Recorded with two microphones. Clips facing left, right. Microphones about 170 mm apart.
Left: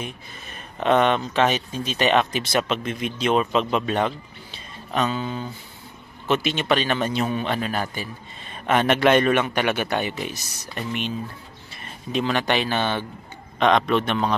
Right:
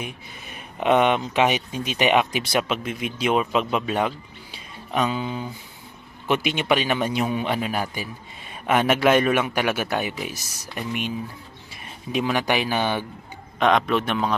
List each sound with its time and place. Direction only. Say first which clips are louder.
0.0 s a man's voice: even; 10° right (ahead or behind)